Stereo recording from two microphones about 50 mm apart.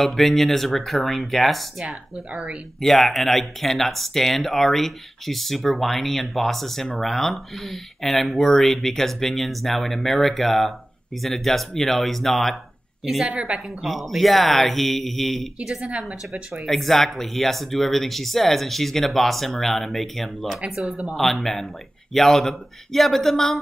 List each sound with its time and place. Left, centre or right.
0.0 s speech: centre
13.3 s a woman's voice: right
13.8 s speech: centre
15.7 s speech: centre
16.6 s speech: centre
20.4 s speech: centre
21.2 s a man's voice: centre